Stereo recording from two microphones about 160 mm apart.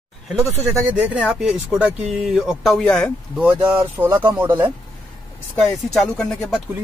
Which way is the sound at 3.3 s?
10° right (ahead or behind).